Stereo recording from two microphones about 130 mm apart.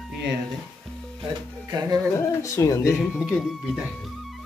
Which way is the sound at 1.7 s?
30° right (ahead or behind).